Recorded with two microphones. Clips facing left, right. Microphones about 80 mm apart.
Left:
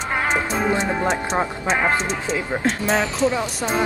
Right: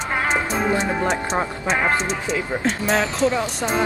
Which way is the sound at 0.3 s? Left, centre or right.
Centre.